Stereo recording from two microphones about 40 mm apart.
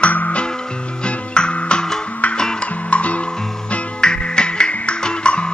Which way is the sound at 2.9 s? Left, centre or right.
Left.